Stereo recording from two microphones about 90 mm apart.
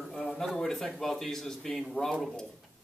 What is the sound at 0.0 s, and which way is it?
Speech, 5° left (ahead or behind).